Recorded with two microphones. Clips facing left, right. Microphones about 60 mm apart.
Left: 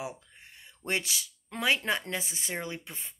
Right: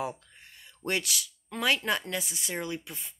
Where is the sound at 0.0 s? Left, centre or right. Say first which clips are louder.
Right 4 dB; centre; by 3.2 s left.